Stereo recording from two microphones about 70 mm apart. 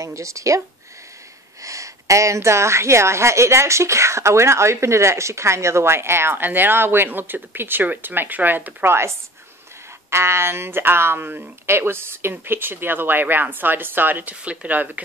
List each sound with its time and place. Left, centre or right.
0.0 s speech: right
1.6 s a woman's voice: right